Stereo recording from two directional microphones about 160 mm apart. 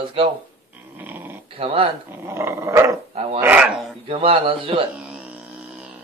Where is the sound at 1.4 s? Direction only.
35° right (ahead or behind).